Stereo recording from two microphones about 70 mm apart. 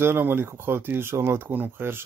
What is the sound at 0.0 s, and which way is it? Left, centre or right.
Speech, right.